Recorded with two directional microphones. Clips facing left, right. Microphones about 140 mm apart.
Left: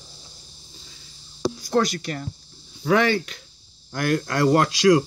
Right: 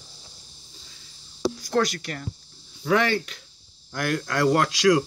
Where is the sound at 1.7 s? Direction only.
25° left (ahead or behind).